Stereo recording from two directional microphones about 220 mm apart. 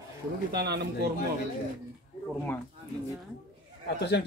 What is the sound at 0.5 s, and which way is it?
Speech, 45° right (ahead or behind).